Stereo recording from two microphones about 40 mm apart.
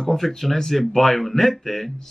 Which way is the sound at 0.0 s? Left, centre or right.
Centre.